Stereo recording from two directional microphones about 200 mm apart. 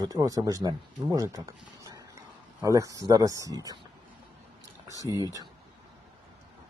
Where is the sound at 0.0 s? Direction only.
15° right (ahead or behind).